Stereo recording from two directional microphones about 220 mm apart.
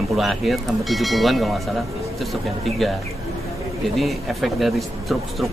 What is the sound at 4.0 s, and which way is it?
Speech, centre (ahead or behind).